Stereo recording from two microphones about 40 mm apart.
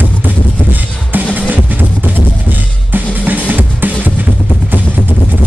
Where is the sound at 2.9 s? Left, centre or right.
Right.